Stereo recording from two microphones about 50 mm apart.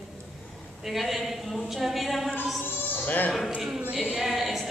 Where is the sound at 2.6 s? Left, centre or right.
Left.